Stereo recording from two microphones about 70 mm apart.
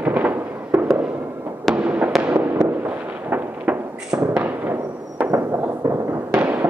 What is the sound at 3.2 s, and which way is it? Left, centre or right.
Firecracker, right.